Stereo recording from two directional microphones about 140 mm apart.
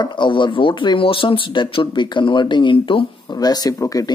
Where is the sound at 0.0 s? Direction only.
35° left (ahead or behind).